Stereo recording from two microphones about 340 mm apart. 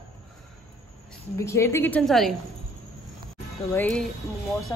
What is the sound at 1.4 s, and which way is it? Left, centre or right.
Speech, centre.